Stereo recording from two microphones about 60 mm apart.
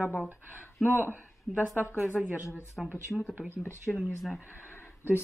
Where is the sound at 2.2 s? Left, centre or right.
Centre.